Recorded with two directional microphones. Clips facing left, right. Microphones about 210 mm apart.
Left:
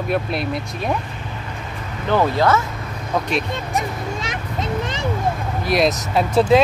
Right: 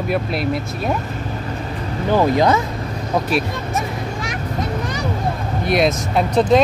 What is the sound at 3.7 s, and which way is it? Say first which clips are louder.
Vehicle: even; 20° left (ahead or behind).